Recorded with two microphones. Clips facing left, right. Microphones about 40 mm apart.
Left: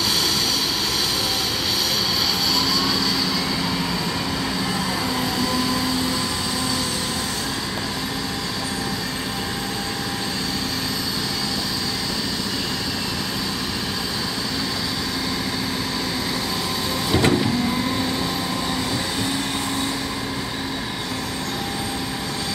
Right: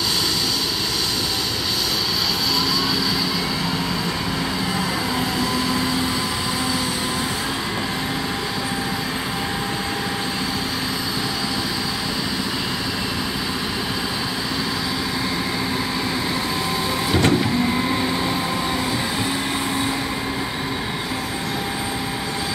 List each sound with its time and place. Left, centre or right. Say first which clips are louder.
5.4 s vehicle: even; centre
17.1 s vehicle: even; centre